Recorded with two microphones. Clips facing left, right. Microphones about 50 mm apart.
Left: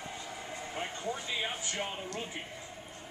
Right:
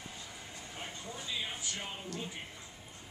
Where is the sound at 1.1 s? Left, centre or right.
Left.